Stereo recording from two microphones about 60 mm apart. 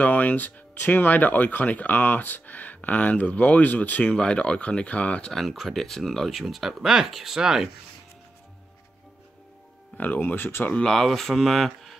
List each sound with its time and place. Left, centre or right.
0.0 s speech: left
4.1 s speech: centre
5.3 s speech: centre
9.9 s speech: left
10.7 s speech: centre